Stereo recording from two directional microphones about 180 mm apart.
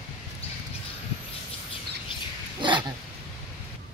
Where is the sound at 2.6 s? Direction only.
25° right (ahead or behind).